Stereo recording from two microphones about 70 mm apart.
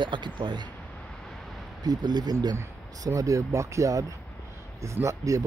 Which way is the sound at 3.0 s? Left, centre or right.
Right.